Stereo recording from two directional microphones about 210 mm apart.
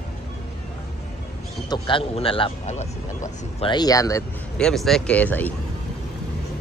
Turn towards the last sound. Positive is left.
turn(degrees=5)  # may be behind; listen again after turning